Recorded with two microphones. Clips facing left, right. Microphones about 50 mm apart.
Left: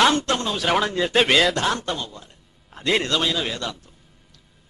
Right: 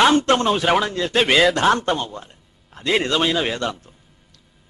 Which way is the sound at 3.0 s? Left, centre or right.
Right.